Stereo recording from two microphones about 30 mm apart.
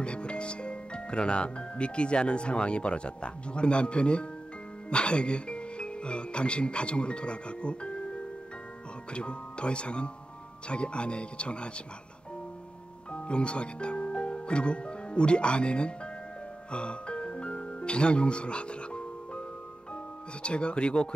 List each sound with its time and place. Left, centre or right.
0.0 s speech: left
13.1 s speech: left
16.7 s music: left
20.4 s speech: left